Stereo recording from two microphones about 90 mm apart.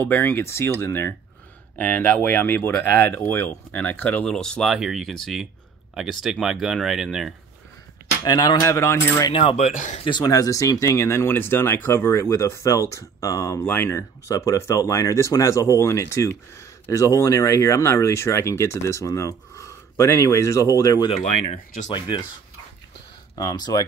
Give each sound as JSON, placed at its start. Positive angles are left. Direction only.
{"t": 0.0, "sound": "speech", "side_deg": 20}
{"t": 4.7, "sound": "speech", "side_deg": -5}
{"t": 8.2, "sound": "speech", "side_deg": 45}
{"t": 10.2, "sound": "speech", "side_deg": 40}
{"t": 21.8, "sound": "speech", "side_deg": 55}
{"t": 23.3, "sound": "speech", "side_deg": 50}